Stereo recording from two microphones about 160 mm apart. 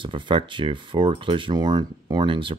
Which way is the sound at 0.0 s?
30° right (ahead or behind).